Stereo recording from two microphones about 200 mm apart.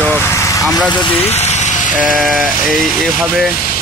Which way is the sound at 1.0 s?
30° left (ahead or behind).